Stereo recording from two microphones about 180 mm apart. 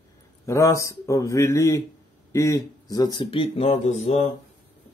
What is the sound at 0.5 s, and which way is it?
Speech, 15° left (ahead or behind).